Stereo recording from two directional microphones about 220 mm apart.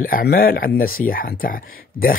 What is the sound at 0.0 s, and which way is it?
Speech, 40° left (ahead or behind).